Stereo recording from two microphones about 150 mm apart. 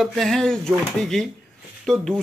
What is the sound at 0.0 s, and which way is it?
Speech, centre (ahead or behind).